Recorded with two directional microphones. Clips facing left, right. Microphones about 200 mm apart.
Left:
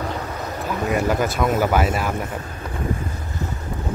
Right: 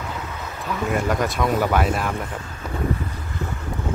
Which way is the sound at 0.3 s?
40° left (ahead or behind).